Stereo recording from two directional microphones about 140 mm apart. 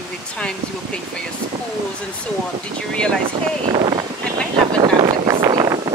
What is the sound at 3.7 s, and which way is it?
Speech, 45° right (ahead or behind).